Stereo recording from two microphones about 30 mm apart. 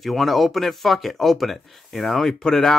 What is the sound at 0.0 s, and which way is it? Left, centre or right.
Speech, centre.